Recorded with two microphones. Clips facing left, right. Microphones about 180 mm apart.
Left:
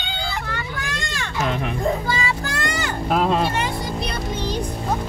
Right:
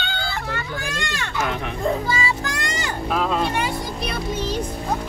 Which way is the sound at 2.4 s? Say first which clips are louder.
Left 2 dB; 15° right (ahead or behind).